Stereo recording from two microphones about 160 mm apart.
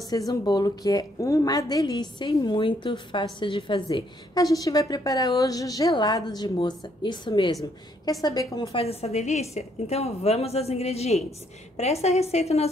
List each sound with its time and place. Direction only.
0.1 s a woman's voice: 25° left (ahead or behind)
8.7 s a woman's voice: 40° left (ahead or behind)